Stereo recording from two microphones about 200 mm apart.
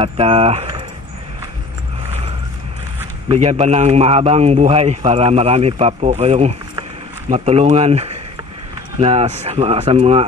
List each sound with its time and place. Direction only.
0.0 s speech: 30° right (ahead or behind)
3.3 s a man's voice: 30° right (ahead or behind)